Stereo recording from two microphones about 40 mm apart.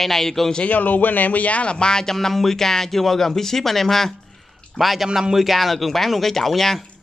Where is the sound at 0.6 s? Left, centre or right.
Left; by 2.1 s centre.